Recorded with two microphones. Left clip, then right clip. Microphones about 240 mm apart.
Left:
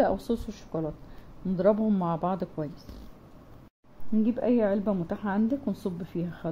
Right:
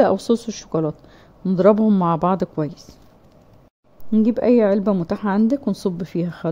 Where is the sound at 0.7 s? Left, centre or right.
Right.